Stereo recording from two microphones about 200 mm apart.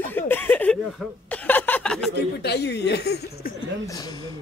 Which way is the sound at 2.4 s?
55° left (ahead or behind).